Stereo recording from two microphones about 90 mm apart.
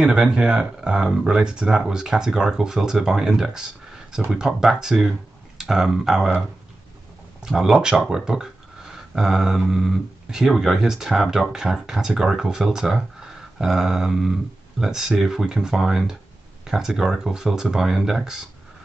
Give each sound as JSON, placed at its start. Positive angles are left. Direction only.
{"t": 0.0, "sound": "speech", "side_deg": -10}
{"t": 7.4, "sound": "speech", "side_deg": -5}